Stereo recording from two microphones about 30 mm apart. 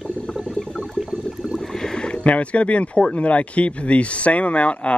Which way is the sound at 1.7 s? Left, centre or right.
Centre.